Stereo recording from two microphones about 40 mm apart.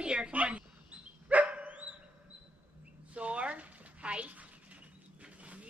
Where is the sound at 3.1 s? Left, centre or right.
Right.